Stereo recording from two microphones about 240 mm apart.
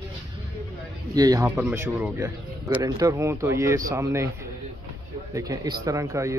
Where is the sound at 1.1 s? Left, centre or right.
Centre.